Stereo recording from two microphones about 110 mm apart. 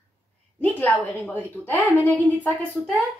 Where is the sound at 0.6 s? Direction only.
15° left (ahead or behind).